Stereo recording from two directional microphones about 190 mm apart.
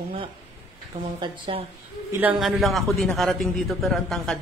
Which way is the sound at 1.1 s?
25° right (ahead or behind).